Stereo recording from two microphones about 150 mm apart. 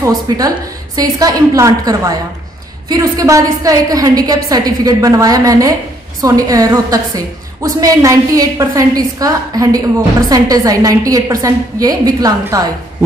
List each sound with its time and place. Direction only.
0.9 s a woman's voice: 25° right (ahead or behind)